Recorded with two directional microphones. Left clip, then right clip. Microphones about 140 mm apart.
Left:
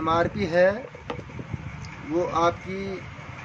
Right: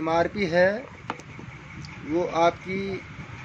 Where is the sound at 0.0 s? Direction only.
25° right (ahead or behind).